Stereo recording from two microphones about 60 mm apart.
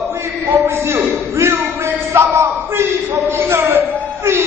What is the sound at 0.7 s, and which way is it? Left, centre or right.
A man's voice, right.